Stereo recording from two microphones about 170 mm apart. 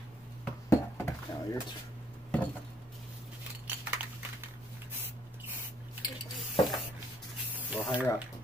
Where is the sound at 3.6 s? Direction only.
10° right (ahead or behind).